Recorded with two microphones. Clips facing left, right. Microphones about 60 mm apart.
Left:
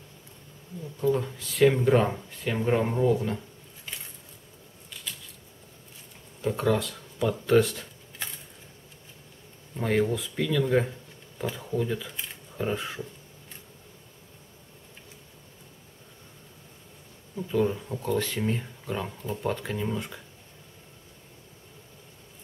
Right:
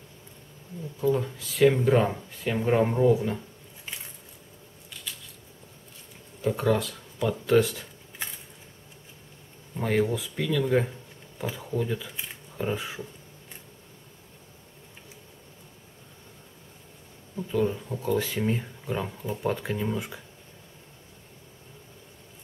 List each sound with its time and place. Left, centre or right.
1.0 s speech: centre
6.4 s speech: centre
8.2 s a sound: centre
9.8 s speech: centre
17.5 s speech: centre